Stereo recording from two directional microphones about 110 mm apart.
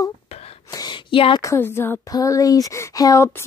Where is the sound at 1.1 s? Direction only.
50° left (ahead or behind).